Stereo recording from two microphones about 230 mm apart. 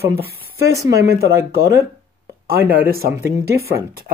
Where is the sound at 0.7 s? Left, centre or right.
Centre.